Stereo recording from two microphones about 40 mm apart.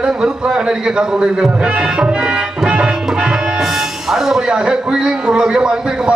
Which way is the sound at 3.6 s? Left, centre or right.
Centre.